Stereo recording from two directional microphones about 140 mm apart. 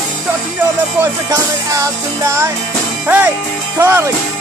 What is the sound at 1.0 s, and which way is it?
Music, 20° right (ahead or behind).